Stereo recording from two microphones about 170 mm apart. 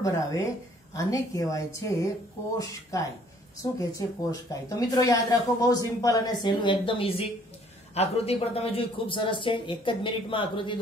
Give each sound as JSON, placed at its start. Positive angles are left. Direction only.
{"t": 0.0, "sound": "speech", "side_deg": 20}
{"t": 4.2, "sound": "speech", "side_deg": 20}